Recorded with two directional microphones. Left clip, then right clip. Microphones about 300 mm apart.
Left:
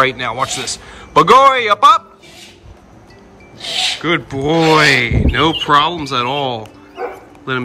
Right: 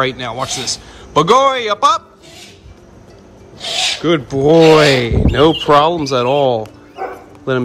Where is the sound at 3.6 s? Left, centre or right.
Centre.